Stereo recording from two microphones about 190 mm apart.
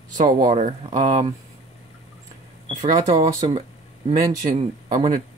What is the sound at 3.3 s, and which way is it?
Speech, 25° right (ahead or behind).